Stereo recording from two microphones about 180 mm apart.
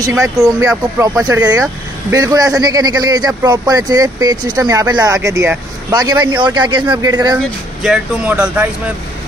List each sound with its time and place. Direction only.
0.0 s speech: 20° right (ahead or behind)
7.8 s speech: 5° right (ahead or behind)